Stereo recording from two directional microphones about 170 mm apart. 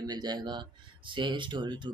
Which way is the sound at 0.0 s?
25° right (ahead or behind).